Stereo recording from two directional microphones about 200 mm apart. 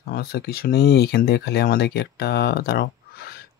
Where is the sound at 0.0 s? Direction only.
50° left (ahead or behind).